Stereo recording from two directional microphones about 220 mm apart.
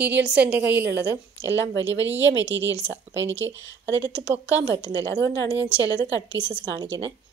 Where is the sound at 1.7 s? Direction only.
55° right (ahead or behind).